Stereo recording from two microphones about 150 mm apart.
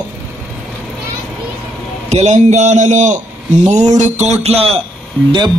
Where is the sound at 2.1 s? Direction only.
50° right (ahead or behind).